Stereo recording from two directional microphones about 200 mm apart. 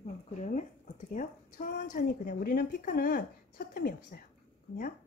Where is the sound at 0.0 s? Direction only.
35° left (ahead or behind).